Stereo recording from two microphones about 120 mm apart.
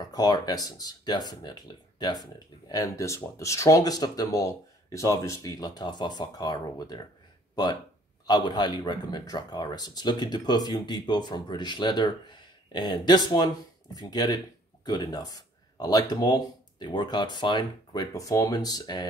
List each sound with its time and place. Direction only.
0.0 s speech: 35° left (ahead or behind)
8.3 s speech: 35° left (ahead or behind)